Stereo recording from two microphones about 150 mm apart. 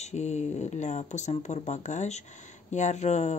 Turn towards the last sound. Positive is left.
turn(degrees=50)  # may be behind; listen again after turning